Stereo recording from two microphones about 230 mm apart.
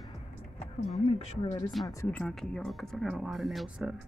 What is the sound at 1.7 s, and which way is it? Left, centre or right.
A woman's voice, centre.